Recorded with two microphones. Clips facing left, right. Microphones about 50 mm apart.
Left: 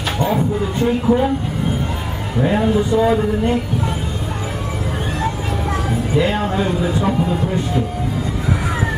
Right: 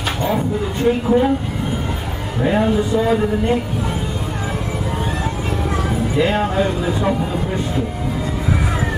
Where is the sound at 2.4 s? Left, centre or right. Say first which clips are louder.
Even; centre.